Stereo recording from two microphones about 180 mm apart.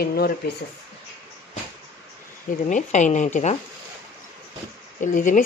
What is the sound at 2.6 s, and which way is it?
Speech, 45° left (ahead or behind).